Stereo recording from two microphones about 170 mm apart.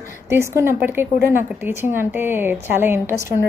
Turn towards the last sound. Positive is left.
turn(degrees=-15)  # may be behind; listen again after turning